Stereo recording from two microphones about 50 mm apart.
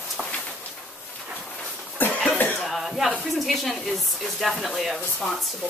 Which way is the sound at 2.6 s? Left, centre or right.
Centre.